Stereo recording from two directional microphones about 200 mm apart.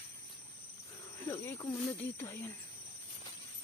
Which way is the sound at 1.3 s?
15° left (ahead or behind).